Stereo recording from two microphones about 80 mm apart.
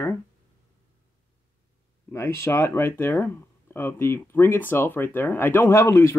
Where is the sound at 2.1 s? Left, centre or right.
Left.